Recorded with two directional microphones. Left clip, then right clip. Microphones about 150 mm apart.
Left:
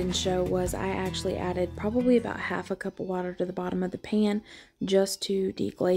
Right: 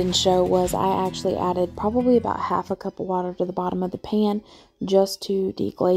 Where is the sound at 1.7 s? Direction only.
Centre (ahead or behind).